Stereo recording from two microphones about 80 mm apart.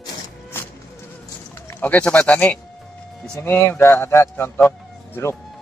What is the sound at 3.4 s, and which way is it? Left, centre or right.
A man's voice, left.